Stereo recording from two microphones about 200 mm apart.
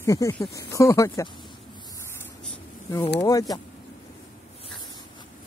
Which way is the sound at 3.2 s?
15° left (ahead or behind).